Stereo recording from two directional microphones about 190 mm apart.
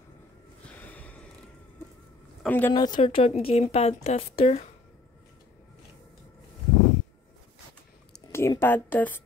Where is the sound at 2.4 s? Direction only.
10° left (ahead or behind).